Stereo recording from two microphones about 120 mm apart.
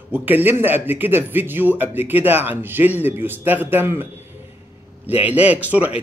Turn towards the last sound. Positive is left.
turn(degrees=-10)  # may be behind; listen again after turning